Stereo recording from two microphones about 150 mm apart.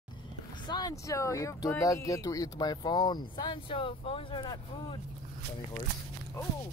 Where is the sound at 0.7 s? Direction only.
25° left (ahead or behind).